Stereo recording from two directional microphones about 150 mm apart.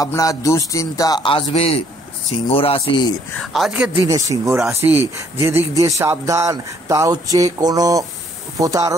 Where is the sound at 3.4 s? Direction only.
Centre (ahead or behind).